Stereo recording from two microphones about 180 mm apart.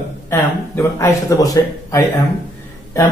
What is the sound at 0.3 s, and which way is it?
A man's voice, 15° left (ahead or behind).